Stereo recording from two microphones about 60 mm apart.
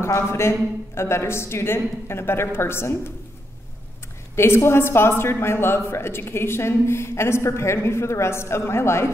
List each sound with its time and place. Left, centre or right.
0.0 s a woman's voice: left
4.4 s a woman's voice: left